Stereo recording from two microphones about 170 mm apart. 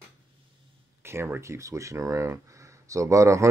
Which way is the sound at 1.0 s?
15° right (ahead or behind).